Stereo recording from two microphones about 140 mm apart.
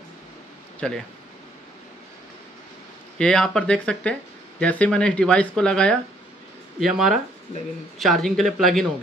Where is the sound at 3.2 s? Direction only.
5° left (ahead or behind).